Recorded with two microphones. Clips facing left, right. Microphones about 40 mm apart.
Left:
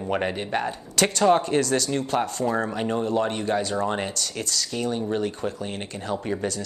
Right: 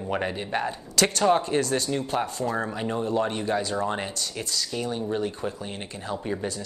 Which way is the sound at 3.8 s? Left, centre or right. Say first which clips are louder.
Left 2 dB; left.